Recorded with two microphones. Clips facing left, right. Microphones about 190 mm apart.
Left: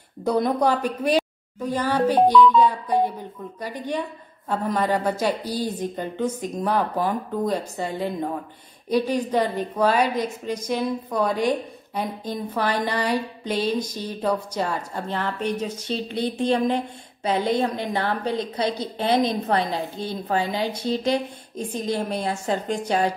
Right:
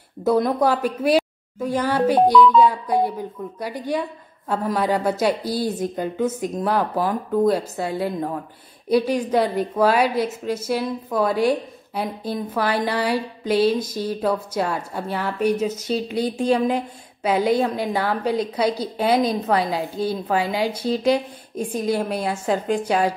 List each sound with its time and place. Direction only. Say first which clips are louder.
0.2 s a woman's voice: right 2 dB; centre (ahead or behind)